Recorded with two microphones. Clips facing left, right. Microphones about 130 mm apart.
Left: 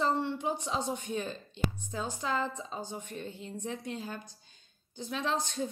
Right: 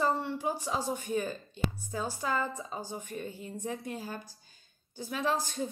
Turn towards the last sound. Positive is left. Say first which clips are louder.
# right 1 dB
turn(degrees=-5)  # may be behind; listen again after turning